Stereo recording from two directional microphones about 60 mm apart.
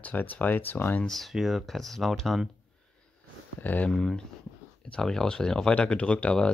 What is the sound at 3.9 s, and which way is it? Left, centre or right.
Speech, centre.